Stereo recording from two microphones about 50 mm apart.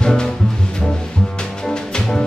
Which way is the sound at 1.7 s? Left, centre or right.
Centre.